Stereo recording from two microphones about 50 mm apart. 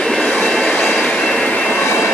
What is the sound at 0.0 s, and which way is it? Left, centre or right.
Vehicle, centre.